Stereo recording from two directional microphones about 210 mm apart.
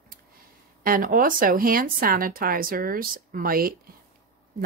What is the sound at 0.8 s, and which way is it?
Speech, 40° right (ahead or behind).